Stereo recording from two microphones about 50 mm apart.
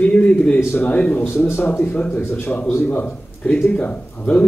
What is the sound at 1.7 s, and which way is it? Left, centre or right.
Speech, left.